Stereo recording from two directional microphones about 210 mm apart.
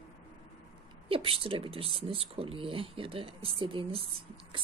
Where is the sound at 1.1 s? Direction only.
25° right (ahead or behind).